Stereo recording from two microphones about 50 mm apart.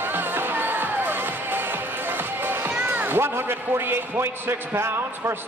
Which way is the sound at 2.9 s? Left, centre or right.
Right.